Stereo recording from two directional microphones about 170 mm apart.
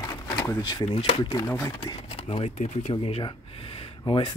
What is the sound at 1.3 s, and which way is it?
Speech, 20° left (ahead or behind).